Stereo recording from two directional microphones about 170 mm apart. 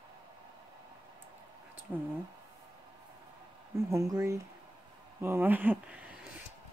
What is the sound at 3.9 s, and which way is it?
Speech, 15° right (ahead or behind).